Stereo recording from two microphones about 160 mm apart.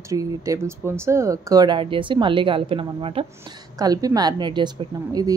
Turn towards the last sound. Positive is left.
turn(degrees=-25)  # may be behind; listen again after turning